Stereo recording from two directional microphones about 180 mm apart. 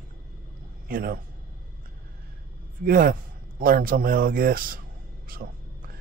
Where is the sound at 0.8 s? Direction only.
55° right (ahead or behind).